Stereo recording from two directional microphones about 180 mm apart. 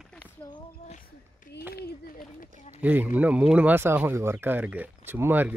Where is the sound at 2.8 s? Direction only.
10° right (ahead or behind).